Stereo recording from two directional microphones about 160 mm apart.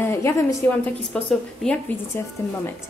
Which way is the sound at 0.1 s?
15° left (ahead or behind).